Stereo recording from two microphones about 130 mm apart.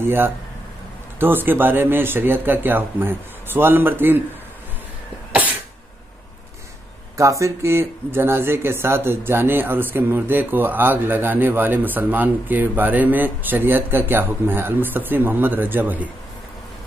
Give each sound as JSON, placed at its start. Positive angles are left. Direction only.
{"t": 0.0, "sound": "speech", "side_deg": -15}
{"t": 7.2, "sound": "speech", "side_deg": -25}